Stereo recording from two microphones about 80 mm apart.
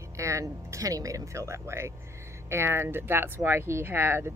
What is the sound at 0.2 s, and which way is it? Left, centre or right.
Speech, right.